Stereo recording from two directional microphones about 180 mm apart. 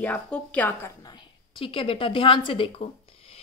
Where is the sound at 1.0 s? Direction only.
25° left (ahead or behind).